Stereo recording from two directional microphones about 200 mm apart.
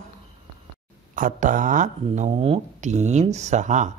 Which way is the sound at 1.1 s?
40° right (ahead or behind).